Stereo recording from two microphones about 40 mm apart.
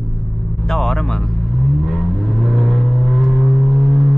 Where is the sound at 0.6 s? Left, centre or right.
Centre.